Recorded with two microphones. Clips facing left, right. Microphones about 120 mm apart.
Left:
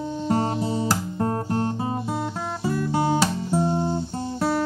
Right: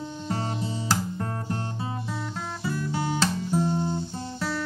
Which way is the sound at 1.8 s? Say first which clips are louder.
Left 6 dB; 40° left (ahead or behind).